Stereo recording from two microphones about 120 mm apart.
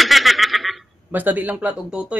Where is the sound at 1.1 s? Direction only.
15° right (ahead or behind).